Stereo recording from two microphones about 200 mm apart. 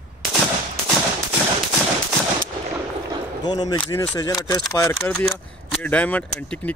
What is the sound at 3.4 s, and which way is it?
Speech, 20° left (ahead or behind).